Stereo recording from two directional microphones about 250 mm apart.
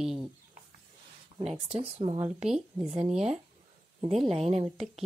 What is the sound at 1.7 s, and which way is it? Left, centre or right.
Speech, right.